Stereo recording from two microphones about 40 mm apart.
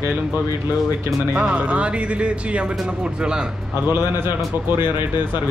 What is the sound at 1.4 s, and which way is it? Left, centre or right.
Speech, right.